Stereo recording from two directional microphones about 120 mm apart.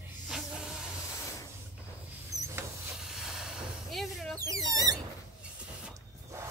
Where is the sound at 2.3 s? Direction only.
25° right (ahead or behind).